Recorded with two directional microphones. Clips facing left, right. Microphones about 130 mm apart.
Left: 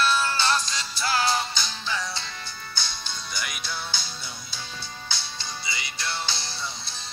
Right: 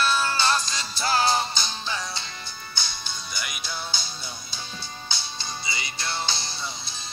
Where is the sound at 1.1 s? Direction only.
30° right (ahead or behind).